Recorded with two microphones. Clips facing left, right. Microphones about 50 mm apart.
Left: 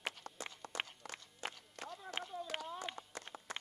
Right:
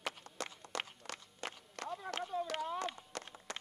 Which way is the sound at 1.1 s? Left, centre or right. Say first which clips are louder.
Right 1 dB; right.